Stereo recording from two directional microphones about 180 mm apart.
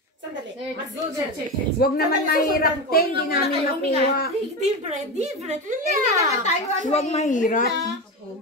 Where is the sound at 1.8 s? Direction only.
55° left (ahead or behind).